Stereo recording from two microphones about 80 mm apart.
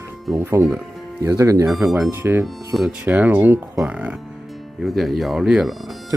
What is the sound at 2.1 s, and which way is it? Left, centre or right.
Speech, right.